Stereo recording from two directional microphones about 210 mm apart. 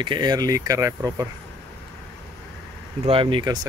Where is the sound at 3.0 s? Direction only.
25° right (ahead or behind).